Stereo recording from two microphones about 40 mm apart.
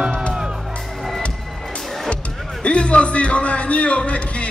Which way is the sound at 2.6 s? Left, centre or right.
Left.